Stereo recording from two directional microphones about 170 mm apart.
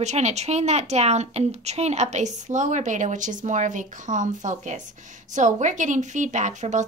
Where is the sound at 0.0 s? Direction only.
40° right (ahead or behind).